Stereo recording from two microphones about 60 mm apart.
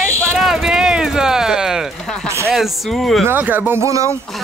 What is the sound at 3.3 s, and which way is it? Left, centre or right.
Speech, right.